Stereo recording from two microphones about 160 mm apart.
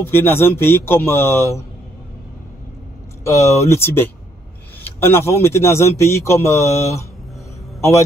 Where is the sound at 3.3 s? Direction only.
20° left (ahead or behind).